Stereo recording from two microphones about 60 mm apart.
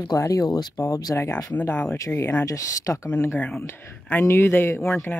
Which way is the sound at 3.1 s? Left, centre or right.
Left.